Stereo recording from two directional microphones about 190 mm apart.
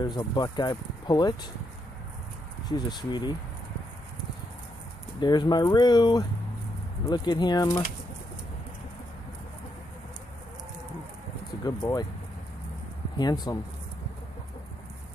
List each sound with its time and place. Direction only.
0.0 s speech: 20° left (ahead or behind)
2.7 s speech: 20° left (ahead or behind)
5.2 s speech: 20° left (ahead or behind)
11.6 s speech: 20° left (ahead or behind)
13.2 s speech: 20° left (ahead or behind)